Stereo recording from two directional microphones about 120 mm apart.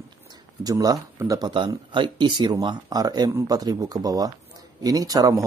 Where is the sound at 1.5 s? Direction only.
45° right (ahead or behind).